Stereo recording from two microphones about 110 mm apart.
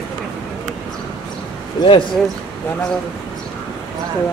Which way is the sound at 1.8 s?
45° left (ahead or behind).